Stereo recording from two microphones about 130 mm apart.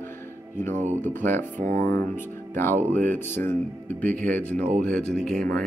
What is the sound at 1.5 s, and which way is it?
Speech, 70° right (ahead or behind).